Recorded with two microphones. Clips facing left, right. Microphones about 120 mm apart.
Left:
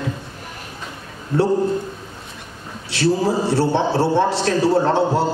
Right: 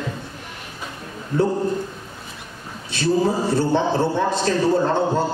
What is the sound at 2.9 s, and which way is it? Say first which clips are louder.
A man's voice: left 1 dB; 70° left (ahead or behind).